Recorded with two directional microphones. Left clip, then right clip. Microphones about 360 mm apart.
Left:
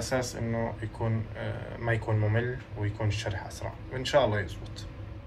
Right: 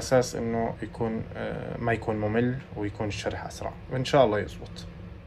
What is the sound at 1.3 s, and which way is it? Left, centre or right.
Speech, centre.